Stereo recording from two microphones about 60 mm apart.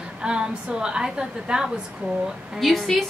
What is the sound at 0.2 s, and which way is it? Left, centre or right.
A woman's voice, centre.